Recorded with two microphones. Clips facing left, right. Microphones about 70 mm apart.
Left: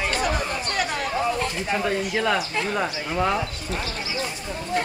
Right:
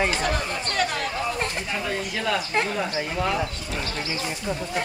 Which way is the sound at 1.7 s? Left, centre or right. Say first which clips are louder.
Left 4 dB; left.